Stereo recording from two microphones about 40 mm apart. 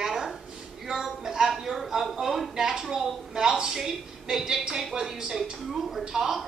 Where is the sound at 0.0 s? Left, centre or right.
Centre.